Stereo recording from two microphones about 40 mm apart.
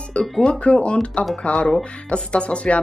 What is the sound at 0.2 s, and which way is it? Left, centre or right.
Speech, left.